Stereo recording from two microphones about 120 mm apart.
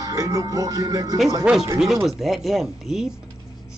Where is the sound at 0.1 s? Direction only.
30° right (ahead or behind).